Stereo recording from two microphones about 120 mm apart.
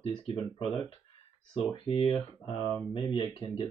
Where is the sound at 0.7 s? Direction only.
55° right (ahead or behind).